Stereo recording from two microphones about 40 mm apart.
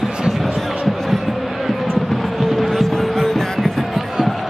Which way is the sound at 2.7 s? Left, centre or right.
Centre.